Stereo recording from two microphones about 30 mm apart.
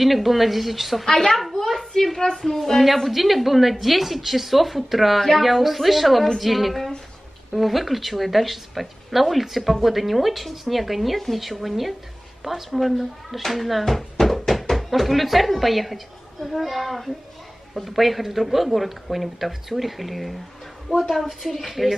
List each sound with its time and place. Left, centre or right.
0.0 s speech: centre
1.0 s a child's voice: centre
1.7 s a child's voice: centre
2.1 s speech: left
2.5 s speech: centre